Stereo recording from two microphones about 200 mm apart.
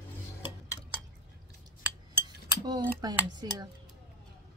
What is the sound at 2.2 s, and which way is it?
Cutlery, 20° right (ahead or behind).